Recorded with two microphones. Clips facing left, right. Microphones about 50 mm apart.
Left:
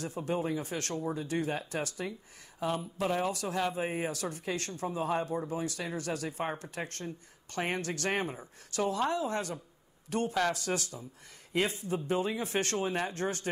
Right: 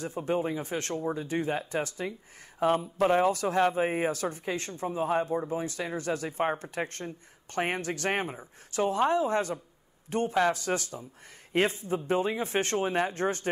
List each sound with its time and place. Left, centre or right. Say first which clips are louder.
0.0 s speech: right 4 dB; right
2.6 s speech: right 7 dB; right
8.3 s speech: right 1 dB; centre
8.8 s speech: right 5 dB; right